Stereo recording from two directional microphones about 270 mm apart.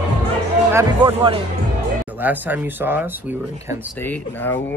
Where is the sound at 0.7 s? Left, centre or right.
Centre.